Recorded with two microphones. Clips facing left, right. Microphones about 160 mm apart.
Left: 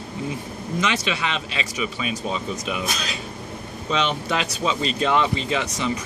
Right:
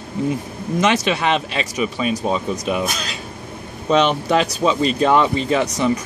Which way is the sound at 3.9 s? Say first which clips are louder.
Right 8 dB; 40° right (ahead or behind).